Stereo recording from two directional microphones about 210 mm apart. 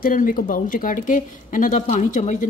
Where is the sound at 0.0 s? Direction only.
40° left (ahead or behind).